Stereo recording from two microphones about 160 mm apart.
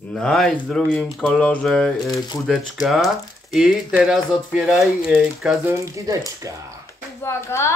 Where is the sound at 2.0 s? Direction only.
25° left (ahead or behind).